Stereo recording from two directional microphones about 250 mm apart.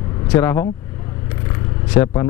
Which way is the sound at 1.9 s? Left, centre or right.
Centre.